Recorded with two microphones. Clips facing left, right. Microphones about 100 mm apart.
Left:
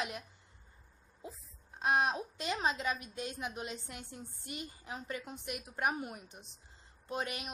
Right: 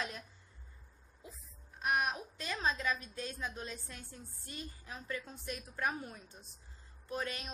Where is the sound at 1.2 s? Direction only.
25° left (ahead or behind).